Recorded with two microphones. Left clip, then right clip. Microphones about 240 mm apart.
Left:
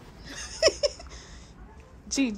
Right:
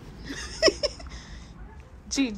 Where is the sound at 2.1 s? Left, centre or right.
Centre.